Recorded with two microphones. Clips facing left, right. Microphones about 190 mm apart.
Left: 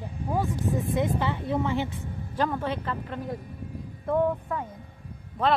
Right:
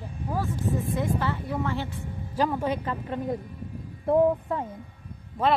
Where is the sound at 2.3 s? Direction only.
10° right (ahead or behind).